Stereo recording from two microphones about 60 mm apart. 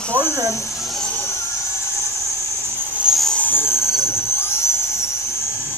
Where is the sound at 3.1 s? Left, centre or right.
Centre.